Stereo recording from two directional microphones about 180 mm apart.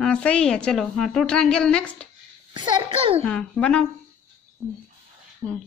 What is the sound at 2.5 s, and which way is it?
Speech, 25° right (ahead or behind).